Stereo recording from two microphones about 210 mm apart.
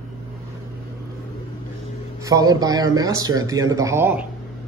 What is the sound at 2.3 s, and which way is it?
Speech, 15° right (ahead or behind).